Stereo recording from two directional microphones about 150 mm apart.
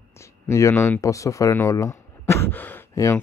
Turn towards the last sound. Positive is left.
turn(degrees=15)  # may be behind; listen again after turning